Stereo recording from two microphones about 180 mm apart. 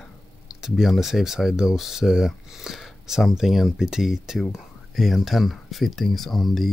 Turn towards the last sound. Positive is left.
turn(degrees=0)  # may be behind; listen again after turning